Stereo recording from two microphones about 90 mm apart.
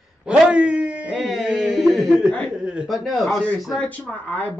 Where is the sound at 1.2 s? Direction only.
Centre (ahead or behind).